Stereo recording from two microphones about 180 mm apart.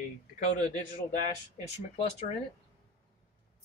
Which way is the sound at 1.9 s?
35° left (ahead or behind).